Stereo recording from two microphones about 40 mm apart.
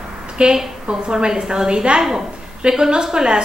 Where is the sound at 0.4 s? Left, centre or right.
Right.